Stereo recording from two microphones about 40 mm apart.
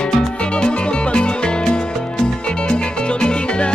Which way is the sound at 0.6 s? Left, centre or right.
Left.